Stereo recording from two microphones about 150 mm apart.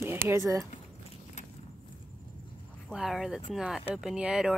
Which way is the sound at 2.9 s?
Centre (ahead or behind).